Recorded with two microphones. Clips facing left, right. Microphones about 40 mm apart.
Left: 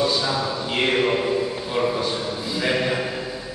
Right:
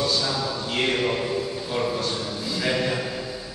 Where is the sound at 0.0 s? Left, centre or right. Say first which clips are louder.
Left 3 dB; centre.